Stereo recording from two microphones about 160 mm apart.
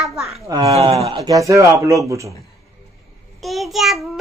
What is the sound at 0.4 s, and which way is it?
Speech, 25° right (ahead or behind).